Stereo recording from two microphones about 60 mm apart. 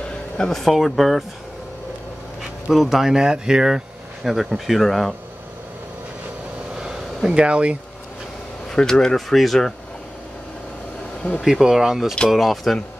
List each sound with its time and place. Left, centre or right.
0.4 s speech: centre
2.7 s speech: centre
6.8 s a sound: centre
8.7 s speech: centre
11.4 s speech: centre